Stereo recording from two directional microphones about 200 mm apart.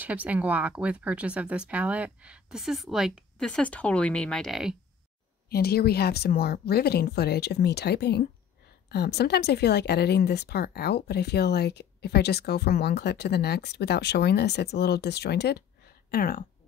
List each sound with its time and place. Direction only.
0.0 s speech: 10° right (ahead or behind)
5.5 s a woman's voice: 50° left (ahead or behind)